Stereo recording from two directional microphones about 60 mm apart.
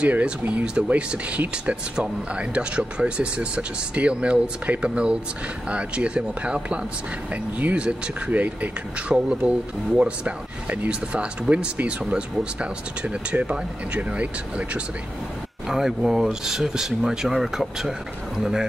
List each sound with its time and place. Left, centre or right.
0.0 s speech: centre
15.7 s speech: centre